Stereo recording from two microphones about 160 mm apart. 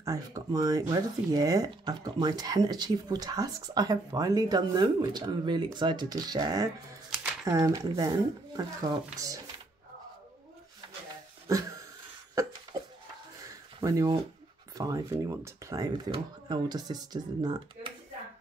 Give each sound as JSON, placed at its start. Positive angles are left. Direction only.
{"t": 0.0, "sound": "speech", "side_deg": -20}
{"t": 11.5, "sound": "speech", "side_deg": -20}
{"t": 12.4, "sound": "a sound", "side_deg": -20}
{"t": 13.7, "sound": "speech", "side_deg": -25}